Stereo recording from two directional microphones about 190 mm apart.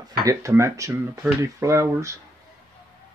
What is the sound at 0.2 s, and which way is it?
Speech, 15° right (ahead or behind).